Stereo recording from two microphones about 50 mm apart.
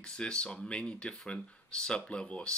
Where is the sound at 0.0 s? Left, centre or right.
Centre.